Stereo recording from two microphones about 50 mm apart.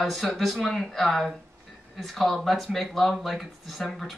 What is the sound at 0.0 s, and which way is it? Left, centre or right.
Speech, centre.